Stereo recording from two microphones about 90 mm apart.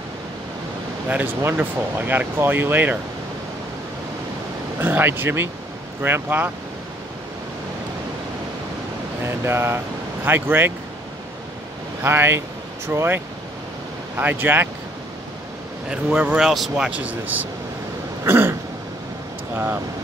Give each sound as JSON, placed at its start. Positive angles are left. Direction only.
{"t": 1.0, "sound": "speech", "side_deg": -15}
{"t": 4.7, "sound": "speech", "side_deg": -25}
{"t": 9.2, "sound": "speech", "side_deg": -25}
{"t": 12.0, "sound": "speech", "side_deg": -25}
{"t": 15.9, "sound": "speech", "side_deg": -15}
{"t": 18.2, "sound": "throat clearing", "side_deg": -30}
{"t": 19.5, "sound": "speech", "side_deg": -25}